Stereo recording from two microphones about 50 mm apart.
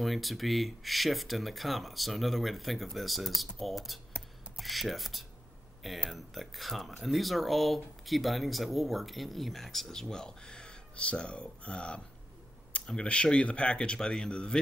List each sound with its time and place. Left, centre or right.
0.0 s speech: centre